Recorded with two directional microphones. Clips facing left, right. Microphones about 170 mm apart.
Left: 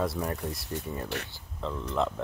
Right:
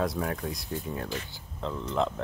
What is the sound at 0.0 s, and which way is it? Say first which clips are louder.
Speech: right 1 dB; centre (ahead or behind).